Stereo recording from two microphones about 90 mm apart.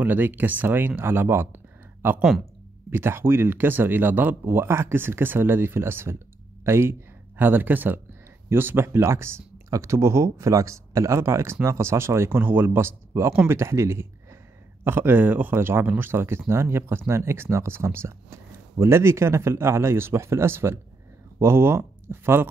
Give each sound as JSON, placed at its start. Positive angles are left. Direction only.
{"t": 0.0, "sound": "speech", "side_deg": -20}